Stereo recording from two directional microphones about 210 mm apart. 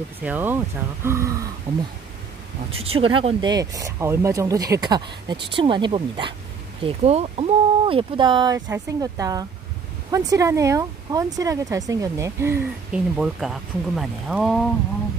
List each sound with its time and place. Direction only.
0.2 s speech: 10° right (ahead or behind)
2.8 s speech: 25° right (ahead or behind); by 14.7 s centre (ahead or behind)